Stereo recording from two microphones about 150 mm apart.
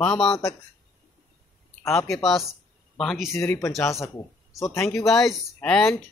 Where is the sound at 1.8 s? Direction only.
20° left (ahead or behind).